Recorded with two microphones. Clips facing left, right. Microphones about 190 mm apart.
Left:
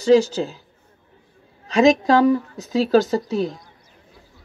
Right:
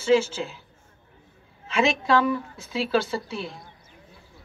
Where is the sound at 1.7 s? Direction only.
40° left (ahead or behind).